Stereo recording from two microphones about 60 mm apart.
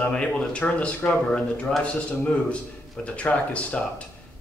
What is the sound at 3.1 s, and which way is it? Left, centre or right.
Speech, left.